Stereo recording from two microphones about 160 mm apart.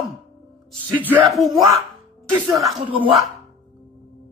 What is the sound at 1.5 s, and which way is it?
Speech, 20° right (ahead or behind).